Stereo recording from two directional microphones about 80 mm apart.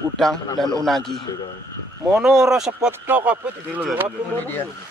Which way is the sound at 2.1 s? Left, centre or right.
Centre.